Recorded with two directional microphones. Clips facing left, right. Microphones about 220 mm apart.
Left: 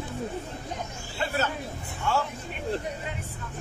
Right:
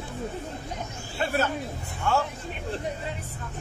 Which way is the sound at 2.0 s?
50° right (ahead or behind).